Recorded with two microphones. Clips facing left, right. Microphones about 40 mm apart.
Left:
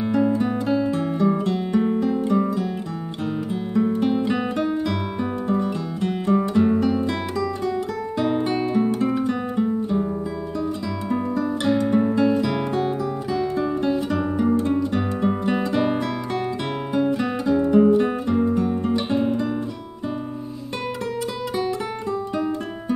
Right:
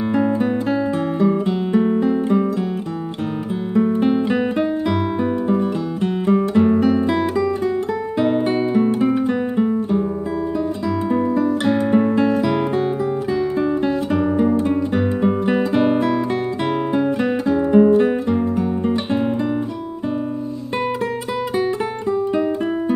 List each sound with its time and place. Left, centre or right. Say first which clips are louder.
0.0 s guitar: right 2 dB; right
3.7 s guitar: right 4 dB; centre
5.5 s music: right 4 dB; centre
8.2 s guitar: right 4 dB; centre
11.4 s music: right 3 dB; centre
12.4 s music: right 4 dB; centre
17.2 s music: right 3 dB; right
22.3 s guitar: right 6 dB; right